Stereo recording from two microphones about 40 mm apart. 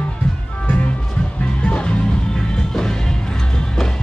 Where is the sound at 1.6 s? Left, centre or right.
Left.